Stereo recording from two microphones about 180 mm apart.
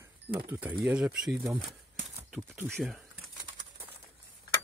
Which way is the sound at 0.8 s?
5° right (ahead or behind).